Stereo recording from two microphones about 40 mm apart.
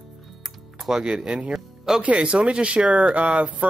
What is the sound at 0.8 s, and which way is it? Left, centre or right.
Music, centre.